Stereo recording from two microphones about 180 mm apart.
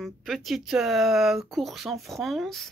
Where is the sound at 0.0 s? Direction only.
Centre (ahead or behind).